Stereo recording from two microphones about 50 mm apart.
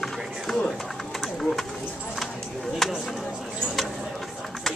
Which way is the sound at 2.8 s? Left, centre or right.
Centre.